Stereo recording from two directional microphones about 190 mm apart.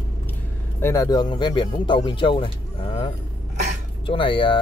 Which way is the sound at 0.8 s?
20° left (ahead or behind).